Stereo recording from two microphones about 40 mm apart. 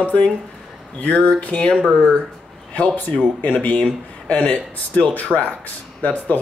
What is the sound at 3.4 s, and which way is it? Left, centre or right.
Speech, left.